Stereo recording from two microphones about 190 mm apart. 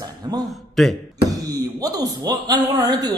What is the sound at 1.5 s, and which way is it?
A man's voice, 20° right (ahead or behind).